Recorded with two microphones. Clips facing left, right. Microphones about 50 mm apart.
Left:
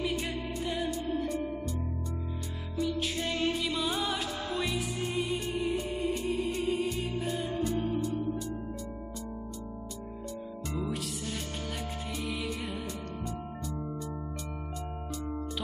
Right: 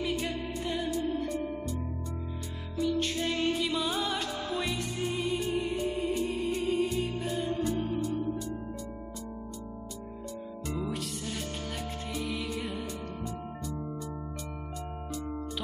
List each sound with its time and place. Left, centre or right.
0.0 s music: centre
2.8 s music: centre
10.7 s music: centre
12.2 s music: centre